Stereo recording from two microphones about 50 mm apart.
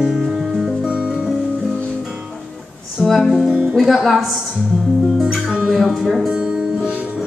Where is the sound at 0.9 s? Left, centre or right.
Centre.